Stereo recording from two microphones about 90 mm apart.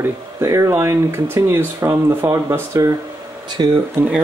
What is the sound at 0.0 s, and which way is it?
Speech, 35° right (ahead or behind).